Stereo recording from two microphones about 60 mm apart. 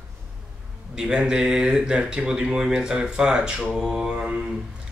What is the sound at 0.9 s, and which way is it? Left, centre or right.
Mantra, centre.